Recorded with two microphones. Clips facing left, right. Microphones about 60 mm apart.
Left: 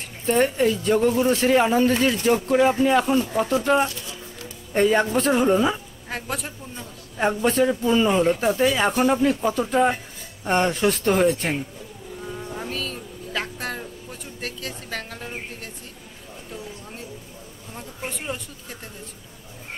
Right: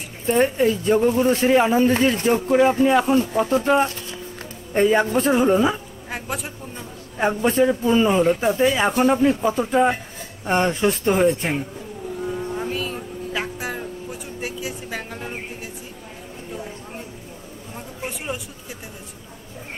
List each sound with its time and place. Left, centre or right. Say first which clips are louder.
0.3 s a woman's voice: right 2 dB; centre
1.1 s a man's voice: right 2 dB; right
1.4 s a woman's voice: right 2 dB; centre
1.9 s a man's voice: right 1 dB; right
2.5 s a woman's voice: right 3 dB; centre
3.7 s music: right 2 dB; right
4.7 s a woman's voice: right 2 dB; centre
12.3 s vehicle: right 4 dB; centre
14.4 s music: right 3 dB; centre
17.7 s a sound: right 1 dB; centre